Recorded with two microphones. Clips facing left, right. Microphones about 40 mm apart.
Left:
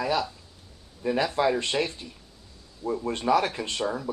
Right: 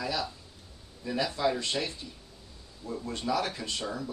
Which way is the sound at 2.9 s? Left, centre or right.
Left.